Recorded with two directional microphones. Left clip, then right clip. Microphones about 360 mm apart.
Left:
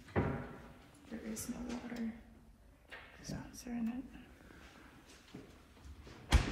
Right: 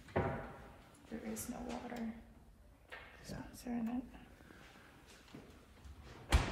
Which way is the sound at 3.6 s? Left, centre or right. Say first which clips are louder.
Right 1 dB; right.